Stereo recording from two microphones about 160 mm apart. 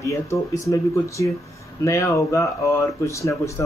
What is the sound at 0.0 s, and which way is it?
Speech, 20° left (ahead or behind).